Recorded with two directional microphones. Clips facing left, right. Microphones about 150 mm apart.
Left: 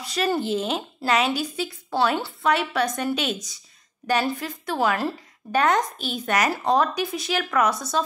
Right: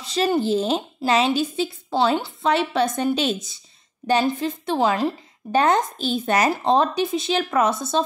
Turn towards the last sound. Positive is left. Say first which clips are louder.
# right 2 dB
turn(degrees=-25)  # may be behind; listen again after turning